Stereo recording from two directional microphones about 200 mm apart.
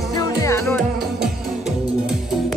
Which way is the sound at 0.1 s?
20° left (ahead or behind).